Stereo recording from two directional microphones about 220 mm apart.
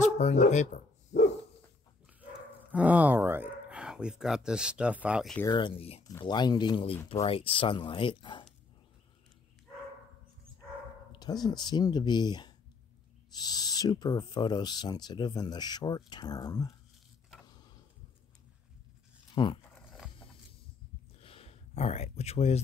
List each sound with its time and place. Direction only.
0.0 s speech: 30° left (ahead or behind)
2.7 s speech: 5° right (ahead or behind)
5.4 s speech: 20° left (ahead or behind)
11.1 s speech: 20° left (ahead or behind)
17.5 s tick-tock: 20° left (ahead or behind)
19.3 s speech: 20° left (ahead or behind)
21.2 s a sound: 25° left (ahead or behind)